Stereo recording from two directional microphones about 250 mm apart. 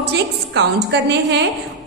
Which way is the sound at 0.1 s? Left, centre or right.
Right.